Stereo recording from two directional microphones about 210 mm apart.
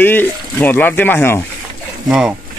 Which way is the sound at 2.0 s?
5° right (ahead or behind).